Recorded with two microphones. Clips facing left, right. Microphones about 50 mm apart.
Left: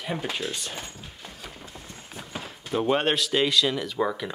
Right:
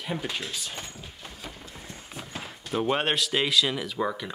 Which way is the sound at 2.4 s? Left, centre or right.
Centre.